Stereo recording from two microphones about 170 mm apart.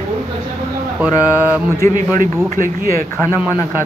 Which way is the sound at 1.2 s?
10° right (ahead or behind).